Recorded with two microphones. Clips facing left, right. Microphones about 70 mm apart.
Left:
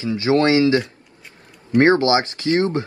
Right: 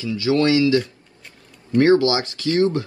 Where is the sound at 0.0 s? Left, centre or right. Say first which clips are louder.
Left 2 dB; left.